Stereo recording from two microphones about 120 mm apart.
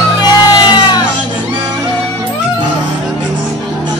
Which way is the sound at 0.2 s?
35° left (ahead or behind).